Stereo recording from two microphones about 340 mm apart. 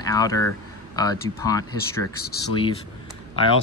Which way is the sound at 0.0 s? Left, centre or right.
Centre.